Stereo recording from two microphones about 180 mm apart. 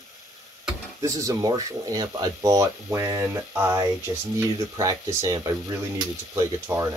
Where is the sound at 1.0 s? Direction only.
20° right (ahead or behind).